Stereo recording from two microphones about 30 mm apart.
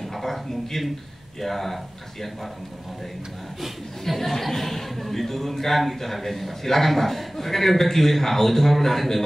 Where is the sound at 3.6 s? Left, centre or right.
Centre.